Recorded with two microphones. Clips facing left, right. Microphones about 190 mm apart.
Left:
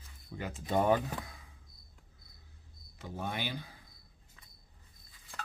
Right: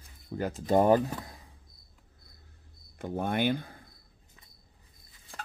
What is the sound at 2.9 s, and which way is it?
Speech, 55° right (ahead or behind).